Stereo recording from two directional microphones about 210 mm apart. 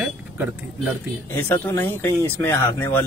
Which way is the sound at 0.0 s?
5° right (ahead or behind).